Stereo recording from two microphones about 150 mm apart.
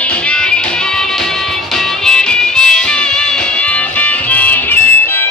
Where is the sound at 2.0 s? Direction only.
5° left (ahead or behind).